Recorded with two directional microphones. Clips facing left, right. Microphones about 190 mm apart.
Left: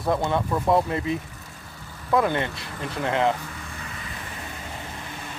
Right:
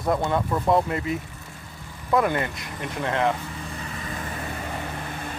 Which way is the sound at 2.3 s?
25° left (ahead or behind).